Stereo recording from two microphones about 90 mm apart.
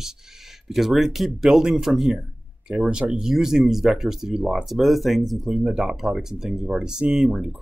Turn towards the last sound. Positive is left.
turn(degrees=0)  # may be behind; listen again after turning